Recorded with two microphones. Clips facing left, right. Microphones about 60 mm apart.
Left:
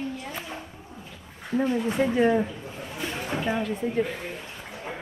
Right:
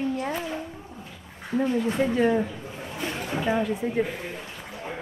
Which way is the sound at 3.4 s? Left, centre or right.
Centre.